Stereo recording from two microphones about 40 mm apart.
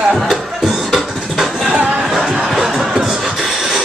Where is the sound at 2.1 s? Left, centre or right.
Centre.